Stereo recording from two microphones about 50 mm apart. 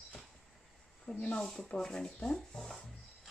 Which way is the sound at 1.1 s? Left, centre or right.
Centre.